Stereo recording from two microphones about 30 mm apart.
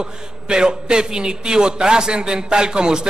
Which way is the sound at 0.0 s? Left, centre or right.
Right.